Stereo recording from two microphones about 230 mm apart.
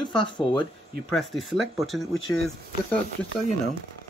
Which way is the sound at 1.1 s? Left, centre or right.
Centre.